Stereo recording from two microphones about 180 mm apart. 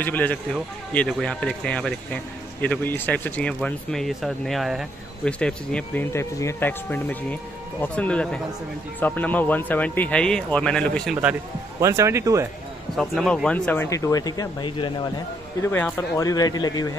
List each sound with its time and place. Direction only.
0.0 s speech: 10° left (ahead or behind)
11.8 s speech: 15° right (ahead or behind)
12.9 s speech: centre (ahead or behind); by 16.9 s 20° left (ahead or behind)